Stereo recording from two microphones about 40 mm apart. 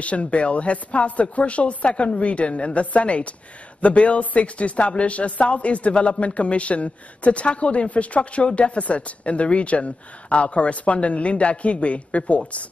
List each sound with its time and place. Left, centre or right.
0.0 s speech: left